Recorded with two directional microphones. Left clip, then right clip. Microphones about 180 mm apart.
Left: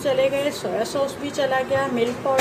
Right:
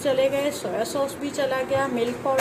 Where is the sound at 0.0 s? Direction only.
15° right (ahead or behind).